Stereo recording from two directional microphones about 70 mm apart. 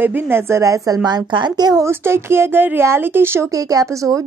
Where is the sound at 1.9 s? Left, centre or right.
Right.